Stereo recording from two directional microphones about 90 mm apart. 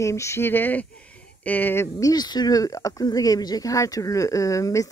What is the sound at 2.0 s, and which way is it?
Speech, 45° left (ahead or behind).